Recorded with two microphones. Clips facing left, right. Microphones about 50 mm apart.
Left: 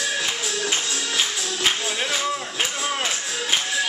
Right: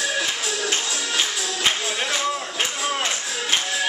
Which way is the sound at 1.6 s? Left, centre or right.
Centre.